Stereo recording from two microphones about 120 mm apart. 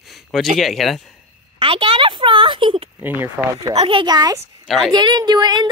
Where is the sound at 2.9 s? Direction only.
15° right (ahead or behind).